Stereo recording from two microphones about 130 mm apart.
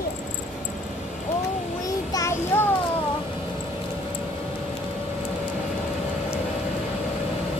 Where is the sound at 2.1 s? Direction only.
25° left (ahead or behind).